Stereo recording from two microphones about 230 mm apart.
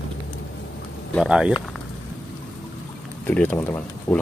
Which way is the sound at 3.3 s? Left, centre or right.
Centre.